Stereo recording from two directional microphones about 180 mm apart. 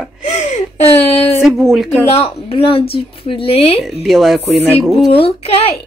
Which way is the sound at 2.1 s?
35° left (ahead or behind).